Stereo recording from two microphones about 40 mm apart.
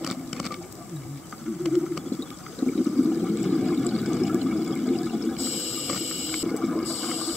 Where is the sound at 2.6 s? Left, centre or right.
Centre.